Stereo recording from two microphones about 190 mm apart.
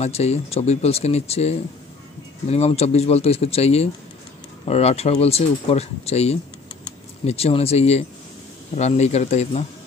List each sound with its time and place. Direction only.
0.0 s speech: 35° left (ahead or behind)